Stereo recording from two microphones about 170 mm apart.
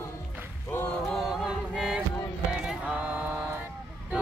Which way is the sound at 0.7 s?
10° left (ahead or behind).